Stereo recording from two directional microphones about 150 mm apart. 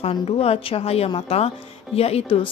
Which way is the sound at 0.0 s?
40° left (ahead or behind).